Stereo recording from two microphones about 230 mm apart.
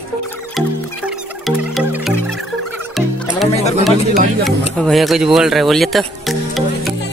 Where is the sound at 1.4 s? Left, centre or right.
Centre.